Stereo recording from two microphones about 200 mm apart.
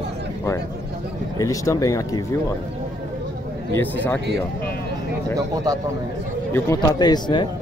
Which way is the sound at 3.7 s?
10° left (ahead or behind).